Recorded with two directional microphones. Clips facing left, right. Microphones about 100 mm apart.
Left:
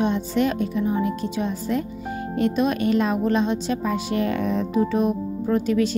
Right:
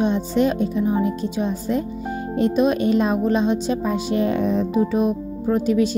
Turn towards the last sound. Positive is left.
turn(degrees=-15)  # may be behind; listen again after turning